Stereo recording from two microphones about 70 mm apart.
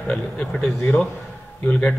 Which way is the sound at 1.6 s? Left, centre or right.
Centre.